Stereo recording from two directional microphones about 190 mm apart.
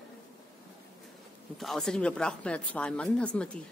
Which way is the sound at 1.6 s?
Centre (ahead or behind).